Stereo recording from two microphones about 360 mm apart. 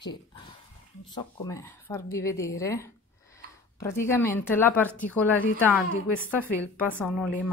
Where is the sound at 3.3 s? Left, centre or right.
Centre.